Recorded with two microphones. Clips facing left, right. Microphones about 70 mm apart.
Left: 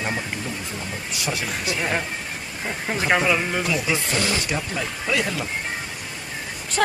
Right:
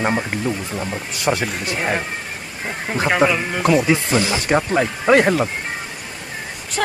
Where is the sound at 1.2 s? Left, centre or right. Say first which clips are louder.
Right 8 dB; right.